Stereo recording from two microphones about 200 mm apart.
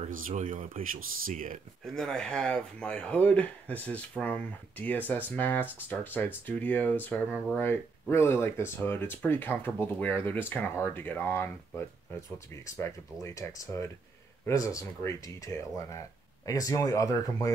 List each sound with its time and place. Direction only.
0.0 s speech: 40° right (ahead or behind)
1.9 s speech: centre (ahead or behind)
12.6 s speech: 15° left (ahead or behind)